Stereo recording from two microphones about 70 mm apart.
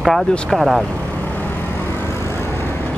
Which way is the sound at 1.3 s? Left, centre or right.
Left.